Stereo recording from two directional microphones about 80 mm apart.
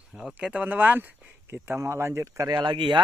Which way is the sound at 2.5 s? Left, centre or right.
Right.